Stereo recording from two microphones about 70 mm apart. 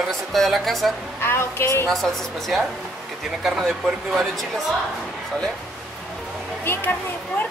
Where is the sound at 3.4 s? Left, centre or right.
Centre.